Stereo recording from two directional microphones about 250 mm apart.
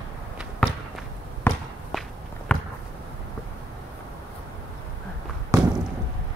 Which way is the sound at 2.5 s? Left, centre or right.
Centre.